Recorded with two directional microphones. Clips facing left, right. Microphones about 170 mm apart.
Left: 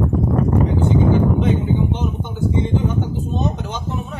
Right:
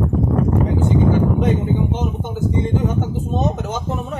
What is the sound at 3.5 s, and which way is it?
Speech, 50° right (ahead or behind).